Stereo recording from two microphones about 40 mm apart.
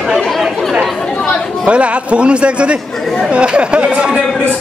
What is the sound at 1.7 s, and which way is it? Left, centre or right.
A man's voice, right.